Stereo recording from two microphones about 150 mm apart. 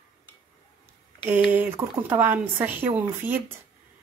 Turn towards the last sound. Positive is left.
turn(degrees=-15)  # may be behind; listen again after turning